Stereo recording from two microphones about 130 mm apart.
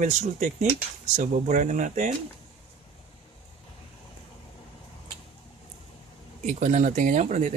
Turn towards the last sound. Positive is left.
turn(degrees=-65)  # may be behind; listen again after turning